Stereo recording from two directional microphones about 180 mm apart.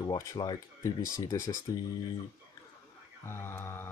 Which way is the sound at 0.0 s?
25° left (ahead or behind).